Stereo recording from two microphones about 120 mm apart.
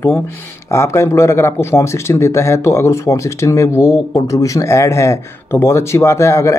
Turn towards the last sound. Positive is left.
turn(degrees=25)  # may be behind; listen again after turning